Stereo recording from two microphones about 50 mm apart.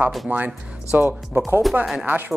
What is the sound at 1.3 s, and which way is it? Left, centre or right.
Speech, right.